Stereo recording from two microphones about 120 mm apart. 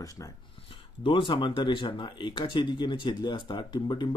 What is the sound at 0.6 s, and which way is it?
Speech, 45° left (ahead or behind).